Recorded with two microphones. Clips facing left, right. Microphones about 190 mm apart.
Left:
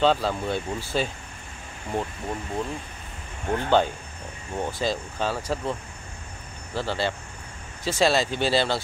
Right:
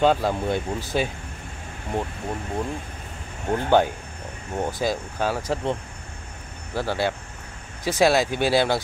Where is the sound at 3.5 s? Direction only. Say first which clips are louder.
Right 2 dB; 15° right (ahead or behind).